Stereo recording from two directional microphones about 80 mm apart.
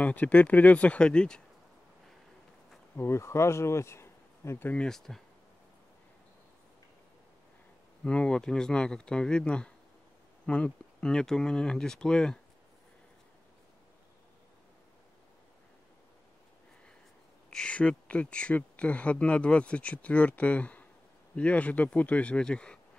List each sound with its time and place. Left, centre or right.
0.0 s speech: centre
3.0 s speech: left
4.7 s speech: centre
8.0 s speech: centre
17.5 s speech: centre